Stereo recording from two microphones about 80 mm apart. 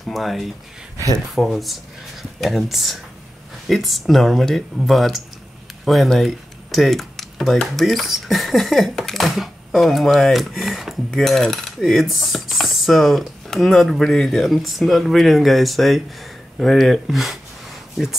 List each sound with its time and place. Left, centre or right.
0.1 s speech: centre